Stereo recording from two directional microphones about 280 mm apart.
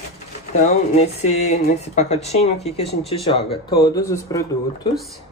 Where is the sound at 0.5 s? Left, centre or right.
Left.